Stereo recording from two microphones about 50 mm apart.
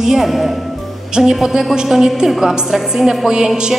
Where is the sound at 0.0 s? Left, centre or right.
Centre.